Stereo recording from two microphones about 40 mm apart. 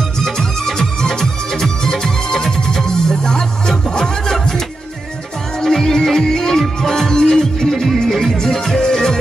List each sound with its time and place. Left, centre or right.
0.2 s music: centre
5.6 s music: centre
7.6 s music: centre